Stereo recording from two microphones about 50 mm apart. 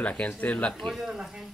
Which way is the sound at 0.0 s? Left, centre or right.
Left.